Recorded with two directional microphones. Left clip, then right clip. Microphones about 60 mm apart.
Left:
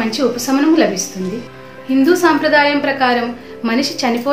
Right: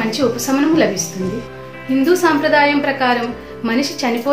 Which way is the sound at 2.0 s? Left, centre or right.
Left.